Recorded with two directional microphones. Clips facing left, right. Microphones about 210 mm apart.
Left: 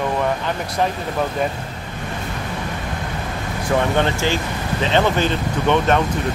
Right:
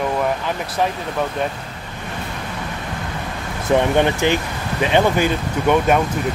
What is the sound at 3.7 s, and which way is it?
Speech, 15° right (ahead or behind).